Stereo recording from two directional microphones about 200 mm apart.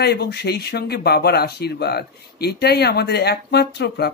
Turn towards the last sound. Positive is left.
turn(degrees=55)  # may be behind; listen again after turning